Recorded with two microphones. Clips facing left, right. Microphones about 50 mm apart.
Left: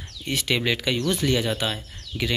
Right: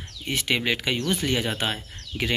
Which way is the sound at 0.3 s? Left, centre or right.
Right.